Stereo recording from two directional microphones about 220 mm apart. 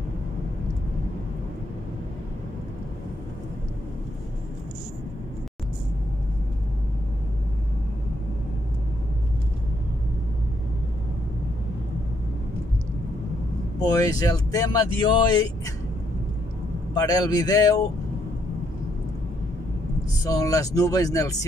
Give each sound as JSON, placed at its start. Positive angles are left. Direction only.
{"t": 13.7, "sound": "speech", "side_deg": 15}
{"t": 16.9, "sound": "speech", "side_deg": 15}
{"t": 20.2, "sound": "speech", "side_deg": 15}